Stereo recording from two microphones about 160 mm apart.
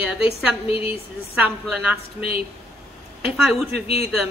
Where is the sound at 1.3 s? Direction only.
5° right (ahead or behind).